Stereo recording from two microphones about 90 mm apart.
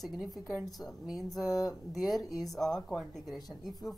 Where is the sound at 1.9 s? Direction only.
Centre (ahead or behind).